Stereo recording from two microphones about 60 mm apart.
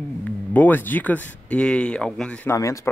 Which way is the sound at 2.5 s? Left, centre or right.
Left.